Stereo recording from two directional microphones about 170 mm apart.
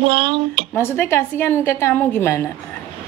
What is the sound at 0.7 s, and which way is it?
A woman's voice, 15° left (ahead or behind).